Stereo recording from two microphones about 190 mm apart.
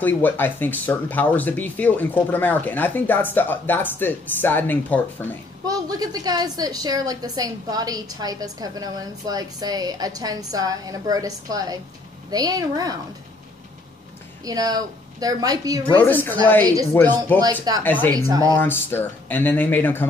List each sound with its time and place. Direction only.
0.0 s speech: 10° left (ahead or behind)
5.7 s a woman's voice: 20° right (ahead or behind)
14.4 s a woman's voice: 20° right (ahead or behind)
16.0 s speech: 10° left (ahead or behind)
17.7 s a woman's voice: 20° right (ahead or behind)
18.6 s speech: 10° left (ahead or behind)